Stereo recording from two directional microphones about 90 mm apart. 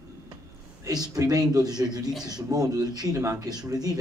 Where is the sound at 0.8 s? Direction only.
45° right (ahead or behind).